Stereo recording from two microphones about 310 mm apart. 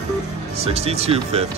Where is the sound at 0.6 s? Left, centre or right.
Centre.